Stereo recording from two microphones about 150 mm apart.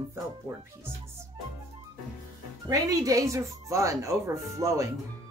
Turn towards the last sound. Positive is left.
turn(degrees=-20)  # may be behind; listen again after turning